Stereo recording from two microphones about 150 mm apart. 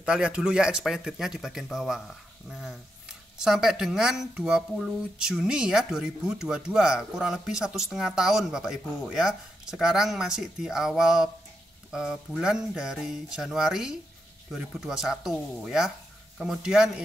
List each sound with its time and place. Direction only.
0.0 s speech: 5° right (ahead or behind)